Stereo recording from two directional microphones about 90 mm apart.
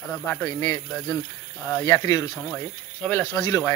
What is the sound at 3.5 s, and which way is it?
Speech, 30° left (ahead or behind).